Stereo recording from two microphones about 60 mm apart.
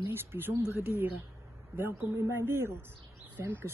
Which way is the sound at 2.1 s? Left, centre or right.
Right.